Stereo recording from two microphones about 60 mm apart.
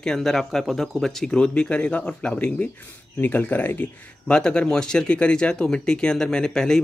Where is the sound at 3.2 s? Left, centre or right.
Left.